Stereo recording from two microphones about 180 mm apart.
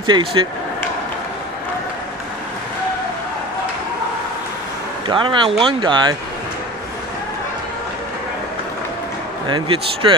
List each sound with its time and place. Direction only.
0.0 s a man's voice: 30° right (ahead or behind)
5.0 s a man's voice: 25° right (ahead or behind)
9.5 s a man's voice: 30° right (ahead or behind)